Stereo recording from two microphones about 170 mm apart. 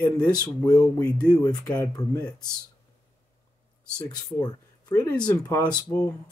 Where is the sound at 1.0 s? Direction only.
5° left (ahead or behind).